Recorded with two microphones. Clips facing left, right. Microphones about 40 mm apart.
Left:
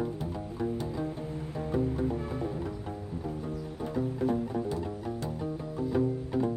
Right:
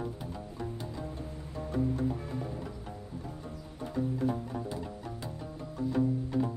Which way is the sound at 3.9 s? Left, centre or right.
Centre.